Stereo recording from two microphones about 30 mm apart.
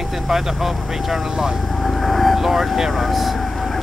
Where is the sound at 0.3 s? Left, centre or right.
Centre.